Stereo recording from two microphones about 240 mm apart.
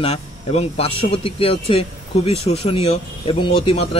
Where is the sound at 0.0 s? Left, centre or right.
Left.